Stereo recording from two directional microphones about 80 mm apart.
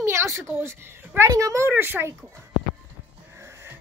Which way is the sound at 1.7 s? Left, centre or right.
Right.